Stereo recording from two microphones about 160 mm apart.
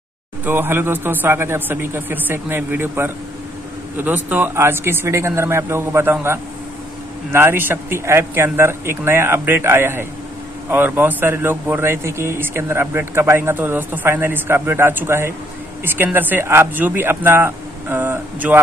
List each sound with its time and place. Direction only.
0.5 s speech: 15° right (ahead or behind)